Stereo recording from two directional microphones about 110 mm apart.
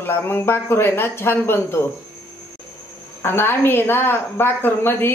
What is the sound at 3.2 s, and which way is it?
A woman's voice, 20° left (ahead or behind).